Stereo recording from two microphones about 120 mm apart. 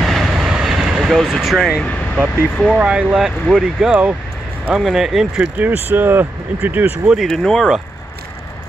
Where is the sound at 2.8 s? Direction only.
5° right (ahead or behind).